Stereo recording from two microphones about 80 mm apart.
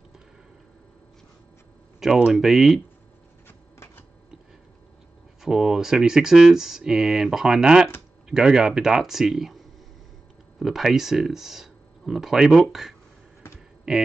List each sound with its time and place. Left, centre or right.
2.0 s speech: centre
3.4 s printer: left
5.4 s speech: centre